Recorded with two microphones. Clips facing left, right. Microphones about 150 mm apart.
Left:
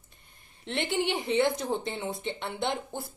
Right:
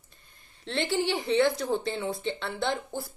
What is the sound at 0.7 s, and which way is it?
A woman's voice, 20° left (ahead or behind).